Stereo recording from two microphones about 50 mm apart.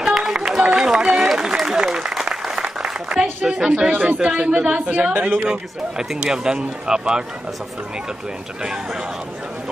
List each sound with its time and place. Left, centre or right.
0.0 s music: centre
1.0 s a sound: centre
1.3 s applause: centre
2.8 s a sound: centre
3.9 s a man's voice: right
4.2 s speech: centre
5.1 s a man's voice: right
5.5 s speech: centre